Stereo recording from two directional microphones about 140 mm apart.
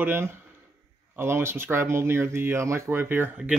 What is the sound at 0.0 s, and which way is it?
Speech, 15° right (ahead or behind).